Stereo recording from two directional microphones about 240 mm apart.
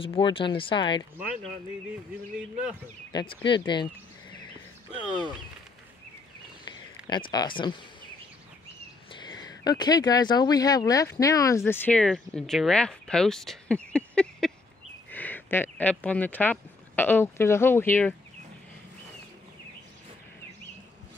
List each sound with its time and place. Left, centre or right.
0.0 s speech: left
1.1 s speech: centre
3.1 s speech: centre
7.1 s speech: centre
9.1 s speech: centre